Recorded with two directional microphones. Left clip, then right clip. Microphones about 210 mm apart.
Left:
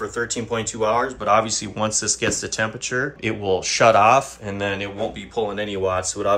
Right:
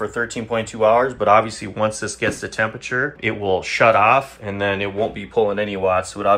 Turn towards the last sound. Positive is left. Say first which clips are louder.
# right 4 dB
turn(degrees=0)  # may be behind; listen again after turning